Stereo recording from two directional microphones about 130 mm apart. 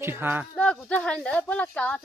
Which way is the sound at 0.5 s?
10° left (ahead or behind).